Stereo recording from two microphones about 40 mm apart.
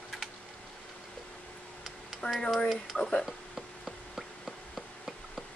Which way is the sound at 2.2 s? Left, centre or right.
Left.